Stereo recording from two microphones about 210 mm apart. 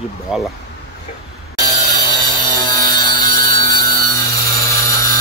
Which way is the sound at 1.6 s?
20° left (ahead or behind).